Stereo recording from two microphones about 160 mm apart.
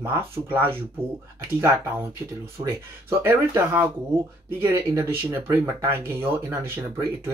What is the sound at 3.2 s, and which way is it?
Speech, 15° right (ahead or behind).